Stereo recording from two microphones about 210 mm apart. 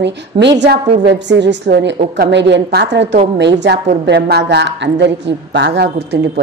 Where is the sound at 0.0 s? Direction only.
55° right (ahead or behind).